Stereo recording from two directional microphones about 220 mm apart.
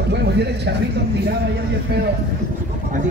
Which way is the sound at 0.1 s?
50° right (ahead or behind).